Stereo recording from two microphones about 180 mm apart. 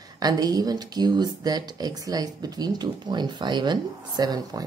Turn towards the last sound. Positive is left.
turn(degrees=-20)  # may be behind; listen again after turning